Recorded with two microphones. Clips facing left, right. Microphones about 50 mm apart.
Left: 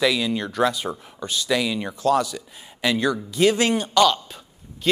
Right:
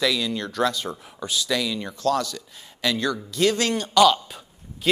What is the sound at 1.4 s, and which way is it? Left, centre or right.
Speech, centre.